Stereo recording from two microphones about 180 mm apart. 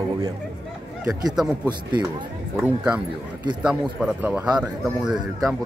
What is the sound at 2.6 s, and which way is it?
Speech, 5° right (ahead or behind).